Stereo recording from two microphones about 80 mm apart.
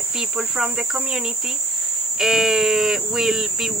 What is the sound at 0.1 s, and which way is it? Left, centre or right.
Speech, centre.